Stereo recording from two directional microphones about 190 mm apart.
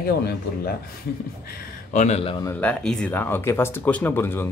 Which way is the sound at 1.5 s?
40° left (ahead or behind).